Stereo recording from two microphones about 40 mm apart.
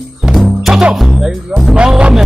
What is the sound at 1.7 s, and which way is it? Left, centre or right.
Music, centre.